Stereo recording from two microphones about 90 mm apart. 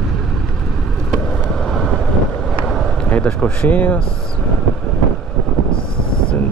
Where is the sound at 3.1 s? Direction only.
10° left (ahead or behind).